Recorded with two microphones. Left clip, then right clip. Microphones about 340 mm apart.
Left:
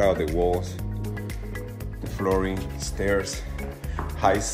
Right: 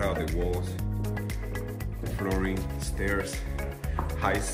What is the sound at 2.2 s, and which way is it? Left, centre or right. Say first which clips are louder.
Speech: left 7 dB; centre.